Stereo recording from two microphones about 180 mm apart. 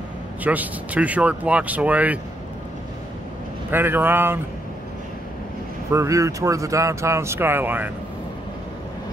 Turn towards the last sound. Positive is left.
turn(degrees=-10)  # may be behind; listen again after turning